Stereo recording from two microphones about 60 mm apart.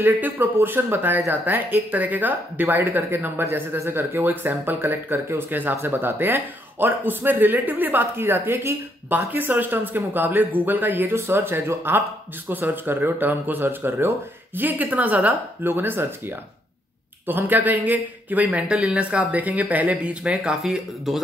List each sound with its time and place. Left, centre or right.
0.0 s speech: right
20.6 s speech: centre